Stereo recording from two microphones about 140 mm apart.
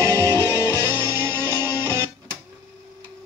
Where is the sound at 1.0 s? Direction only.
15° right (ahead or behind).